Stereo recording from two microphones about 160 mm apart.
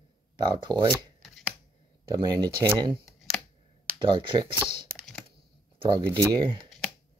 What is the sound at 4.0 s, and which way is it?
Speech, 30° right (ahead or behind).